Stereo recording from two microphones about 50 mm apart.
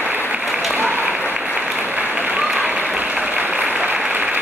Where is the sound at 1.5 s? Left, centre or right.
Centre.